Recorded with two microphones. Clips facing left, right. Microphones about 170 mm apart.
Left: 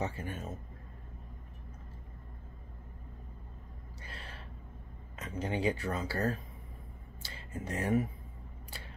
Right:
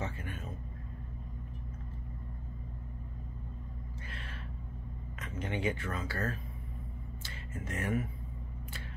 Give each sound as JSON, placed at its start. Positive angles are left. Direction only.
{"t": 0.0, "sound": "a sound", "side_deg": 30}
{"t": 4.1, "sound": "gasp", "side_deg": 35}
{"t": 5.2, "sound": "speech", "side_deg": 35}